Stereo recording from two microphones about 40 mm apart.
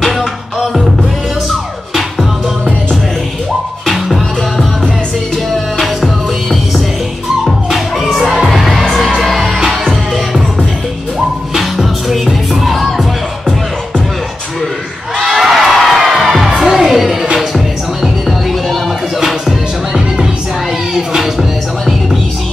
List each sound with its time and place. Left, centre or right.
3.8 s music: centre
7.4 s music: centre
8.3 s music: centre
8.5 s music: centre
11.5 s music: centre
15.1 s music: centre
18.7 s music: centre
20.9 s music: centre